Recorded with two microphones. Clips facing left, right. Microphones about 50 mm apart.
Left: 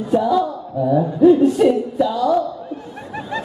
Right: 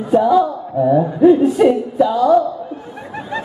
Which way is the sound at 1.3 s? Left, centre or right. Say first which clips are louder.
Right 1 dB; centre.